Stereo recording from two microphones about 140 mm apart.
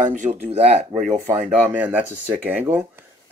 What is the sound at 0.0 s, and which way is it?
Speech, 60° right (ahead or behind).